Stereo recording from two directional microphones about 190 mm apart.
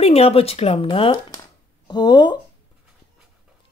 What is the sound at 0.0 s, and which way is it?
Speech, 30° left (ahead or behind).